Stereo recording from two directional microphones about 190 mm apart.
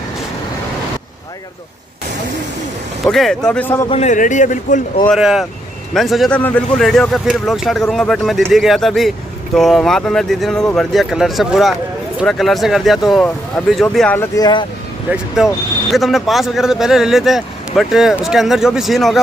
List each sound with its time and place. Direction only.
3.1 s speech: centre (ahead or behind)
3.9 s a man's voice: 40° left (ahead or behind)
5.0 s speech: centre (ahead or behind); by 14.7 s 20° left (ahead or behind)
15.0 s speech: centre (ahead or behind)